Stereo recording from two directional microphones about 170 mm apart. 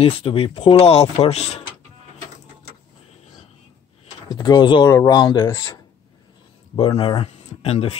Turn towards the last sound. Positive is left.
turn(degrees=35)  # may be behind; listen again after turning